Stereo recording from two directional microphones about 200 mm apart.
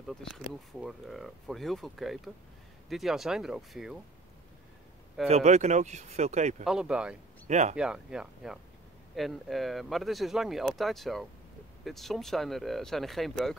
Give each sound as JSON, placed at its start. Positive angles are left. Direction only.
{"t": 0.1, "sound": "speech", "side_deg": 0}
{"t": 5.3, "sound": "speech", "side_deg": -35}
{"t": 6.6, "sound": "speech", "side_deg": -5}
{"t": 7.4, "sound": "speech", "side_deg": -35}
{"t": 7.7, "sound": "speech", "side_deg": -5}